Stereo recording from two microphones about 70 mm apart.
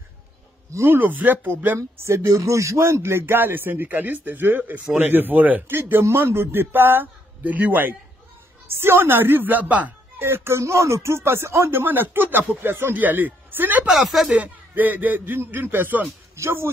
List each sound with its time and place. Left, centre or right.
0.7 s speech: right
1.8 s speech: right
10.2 s speech: right
13.9 s speech: centre
14.7 s speech: right